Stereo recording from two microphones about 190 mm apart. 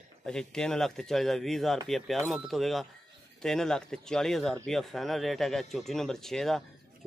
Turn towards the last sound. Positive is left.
turn(degrees=0)  # may be behind; listen again after turning